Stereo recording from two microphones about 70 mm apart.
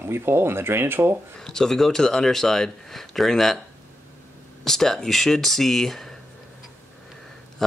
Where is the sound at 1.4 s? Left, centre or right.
Centre.